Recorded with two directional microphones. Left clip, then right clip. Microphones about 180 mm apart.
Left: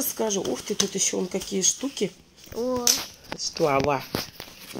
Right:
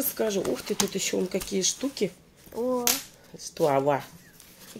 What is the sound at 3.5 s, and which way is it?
Speech, 40° left (ahead or behind).